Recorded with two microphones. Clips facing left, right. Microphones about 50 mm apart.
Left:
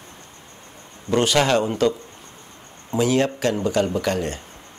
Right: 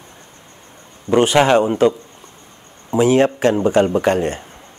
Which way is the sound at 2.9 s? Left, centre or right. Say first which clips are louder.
Right 6 dB; right.